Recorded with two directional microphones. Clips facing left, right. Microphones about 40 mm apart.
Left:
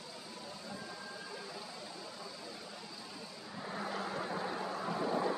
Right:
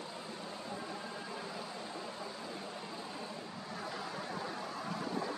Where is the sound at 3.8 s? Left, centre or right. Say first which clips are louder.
Left 4 dB; centre.